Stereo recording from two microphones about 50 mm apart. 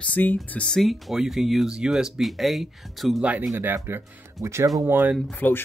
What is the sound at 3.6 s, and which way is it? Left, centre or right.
Speech, right.